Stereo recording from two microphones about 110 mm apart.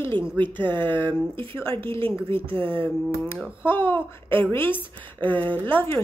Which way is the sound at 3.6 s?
20° left (ahead or behind).